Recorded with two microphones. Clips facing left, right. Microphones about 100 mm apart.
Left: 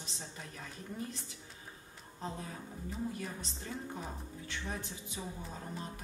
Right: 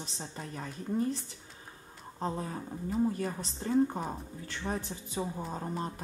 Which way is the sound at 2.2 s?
40° right (ahead or behind).